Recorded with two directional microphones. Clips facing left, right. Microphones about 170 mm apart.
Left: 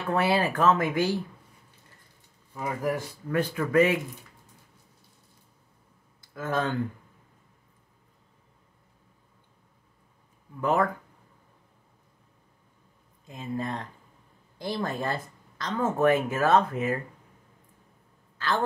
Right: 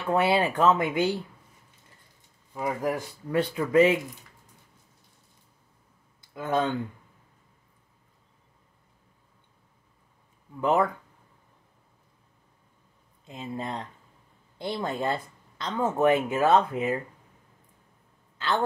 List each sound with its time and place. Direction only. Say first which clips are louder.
0.1 s speech: right 2 dB; 20° right (ahead or behind)
2.5 s speech: right 1 dB; 15° right (ahead or behind)
6.3 s speech: right 2 dB; 20° right (ahead or behind)
10.6 s speech: right 1 dB; 20° right (ahead or behind)
13.3 s speech: left 2 dB; 20° right (ahead or behind)